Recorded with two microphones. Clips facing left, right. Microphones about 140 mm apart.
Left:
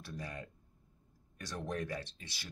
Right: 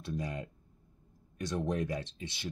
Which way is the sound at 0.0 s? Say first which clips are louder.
Right 7 dB; 20° right (ahead or behind).